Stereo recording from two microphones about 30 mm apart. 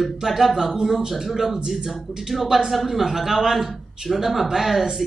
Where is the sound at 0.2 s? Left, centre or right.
Centre.